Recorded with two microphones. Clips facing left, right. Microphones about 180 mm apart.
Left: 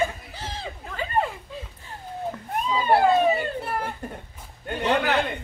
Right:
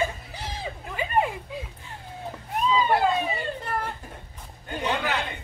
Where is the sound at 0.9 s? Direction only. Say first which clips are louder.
Right 1 dB; 10° right (ahead or behind).